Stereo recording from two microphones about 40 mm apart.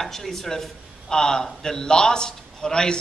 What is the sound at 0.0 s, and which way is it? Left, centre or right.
A man's voice, centre.